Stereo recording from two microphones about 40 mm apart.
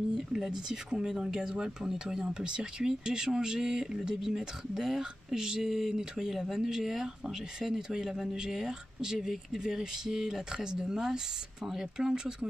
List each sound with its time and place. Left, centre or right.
0.1 s speech: centre
2.3 s speech: right